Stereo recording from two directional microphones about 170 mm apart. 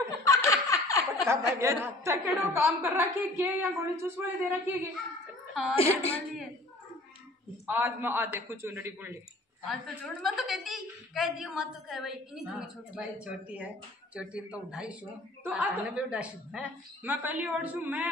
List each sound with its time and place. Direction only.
0.2 s laughter: 20° left (ahead or behind)
1.2 s a woman's voice: 15° right (ahead or behind)
5.5 s a woman's voice: centre (ahead or behind)
7.6 s a woman's voice: 10° right (ahead or behind)
10.0 s a woman's voice: centre (ahead or behind)